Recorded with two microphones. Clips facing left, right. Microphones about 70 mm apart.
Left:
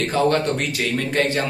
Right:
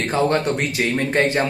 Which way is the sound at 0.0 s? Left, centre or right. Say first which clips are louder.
Even; right.